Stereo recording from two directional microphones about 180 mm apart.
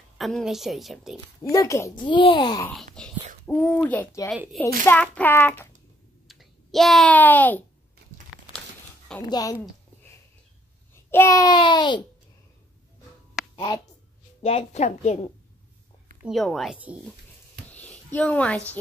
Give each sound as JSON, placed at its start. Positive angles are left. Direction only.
{"t": 0.2, "sound": "a woman's voice", "side_deg": 0}
{"t": 1.4, "sound": "a child's voice", "side_deg": 15}
{"t": 2.6, "sound": "a woman's voice", "side_deg": 5}
{"t": 6.2, "sound": "a child's voice", "side_deg": 0}
{"t": 9.3, "sound": "speech", "side_deg": 20}
{"t": 11.1, "sound": "speech", "side_deg": 15}
{"t": 14.4, "sound": "a woman's voice", "side_deg": 35}
{"t": 16.2, "sound": "a woman's voice", "side_deg": 0}
{"t": 17.6, "sound": "a sound", "side_deg": 10}